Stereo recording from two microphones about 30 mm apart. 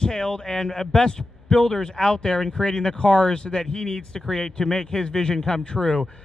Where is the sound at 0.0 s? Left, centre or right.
Left.